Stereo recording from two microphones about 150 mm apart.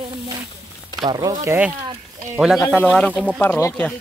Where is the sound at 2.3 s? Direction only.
5° right (ahead or behind); by 3.8 s 15° left (ahead or behind).